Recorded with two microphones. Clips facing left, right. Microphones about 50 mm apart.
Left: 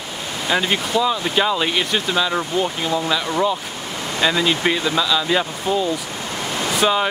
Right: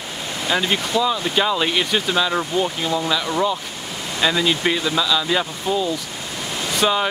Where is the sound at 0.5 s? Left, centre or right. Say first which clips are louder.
Left 1 dB; centre.